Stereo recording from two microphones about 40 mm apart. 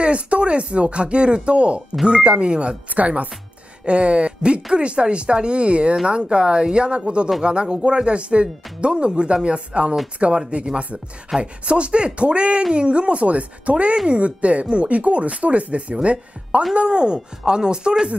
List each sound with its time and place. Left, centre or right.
0.0 s speech: right
2.9 s speech: right
11.3 s speech: centre
11.6 s speech: right